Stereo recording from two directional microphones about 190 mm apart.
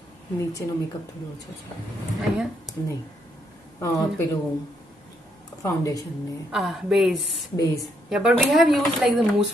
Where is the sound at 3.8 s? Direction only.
15° left (ahead or behind).